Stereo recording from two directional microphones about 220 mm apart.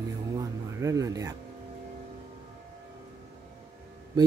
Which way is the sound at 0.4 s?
15° right (ahead or behind).